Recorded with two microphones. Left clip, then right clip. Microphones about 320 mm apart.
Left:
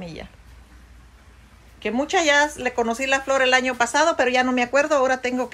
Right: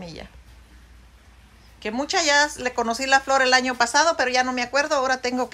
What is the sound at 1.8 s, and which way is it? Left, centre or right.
A woman's voice, centre.